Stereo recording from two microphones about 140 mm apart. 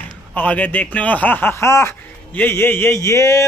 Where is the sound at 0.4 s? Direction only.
10° left (ahead or behind).